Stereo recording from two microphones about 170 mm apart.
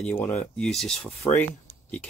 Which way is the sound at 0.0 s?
15° left (ahead or behind).